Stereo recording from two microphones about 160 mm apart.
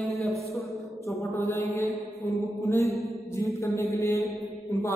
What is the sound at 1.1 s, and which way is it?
Speech, 20° left (ahead or behind).